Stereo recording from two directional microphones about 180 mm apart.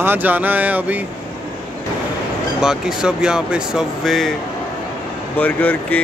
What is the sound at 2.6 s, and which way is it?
Speech, 5° right (ahead or behind).